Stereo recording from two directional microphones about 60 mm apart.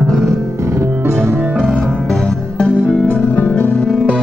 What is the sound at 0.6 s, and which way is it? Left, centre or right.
Music, right.